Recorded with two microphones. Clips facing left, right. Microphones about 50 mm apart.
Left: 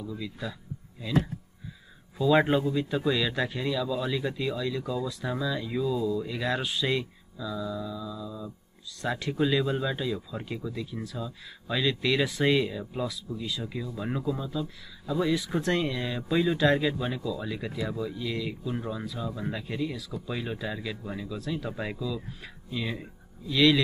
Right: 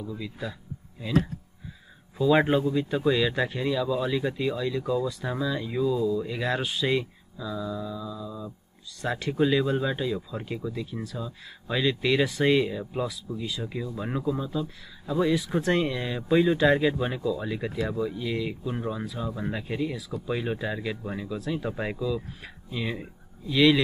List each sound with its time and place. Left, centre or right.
0.0 s speech: centre
2.1 s speech: centre